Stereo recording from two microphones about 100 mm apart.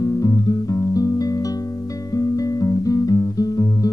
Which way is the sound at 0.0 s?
35° left (ahead or behind).